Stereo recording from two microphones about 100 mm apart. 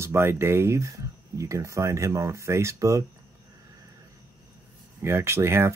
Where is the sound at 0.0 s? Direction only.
25° right (ahead or behind).